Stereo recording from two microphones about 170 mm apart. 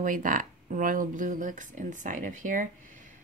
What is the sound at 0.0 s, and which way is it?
Speech, 50° right (ahead or behind).